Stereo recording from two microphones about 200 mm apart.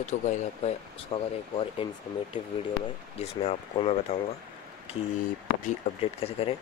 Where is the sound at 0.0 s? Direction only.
35° left (ahead or behind).